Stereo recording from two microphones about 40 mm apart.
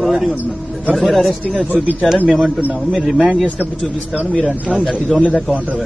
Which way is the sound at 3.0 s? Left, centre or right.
Centre.